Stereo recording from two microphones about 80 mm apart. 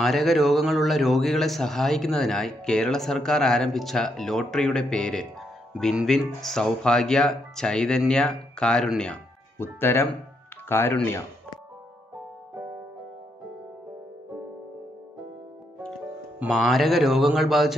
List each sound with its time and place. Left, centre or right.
0.0 s a man's voice: centre
9.6 s speech: left
16.4 s a man's voice: centre